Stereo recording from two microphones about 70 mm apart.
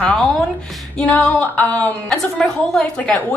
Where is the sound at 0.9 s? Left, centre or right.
Centre.